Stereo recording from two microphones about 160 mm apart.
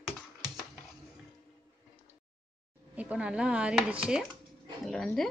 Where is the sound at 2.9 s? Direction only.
10° right (ahead or behind).